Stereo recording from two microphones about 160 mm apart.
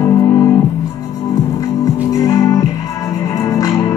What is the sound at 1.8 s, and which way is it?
Music, 20° left (ahead or behind).